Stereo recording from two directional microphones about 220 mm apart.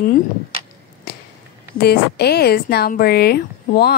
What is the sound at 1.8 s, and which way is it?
A woman's voice, 45° left (ahead or behind).